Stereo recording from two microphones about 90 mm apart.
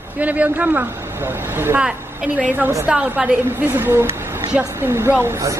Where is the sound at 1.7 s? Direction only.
15° right (ahead or behind).